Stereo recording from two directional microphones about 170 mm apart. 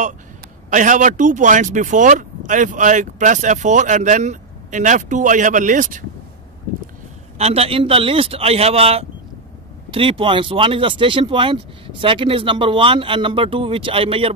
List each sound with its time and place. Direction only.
0.7 s speech: 50° right (ahead or behind)
7.3 s speech: 35° right (ahead or behind)